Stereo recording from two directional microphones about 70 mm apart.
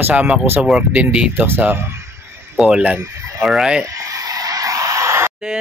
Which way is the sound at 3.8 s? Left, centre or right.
Right.